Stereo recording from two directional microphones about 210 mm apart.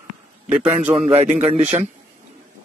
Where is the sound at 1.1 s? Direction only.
30° right (ahead or behind).